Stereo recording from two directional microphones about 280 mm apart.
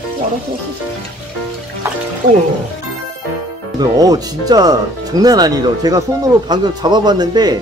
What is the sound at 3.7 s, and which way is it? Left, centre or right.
Speech, centre.